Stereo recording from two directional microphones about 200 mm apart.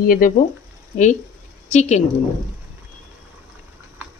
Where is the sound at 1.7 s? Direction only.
35° left (ahead or behind).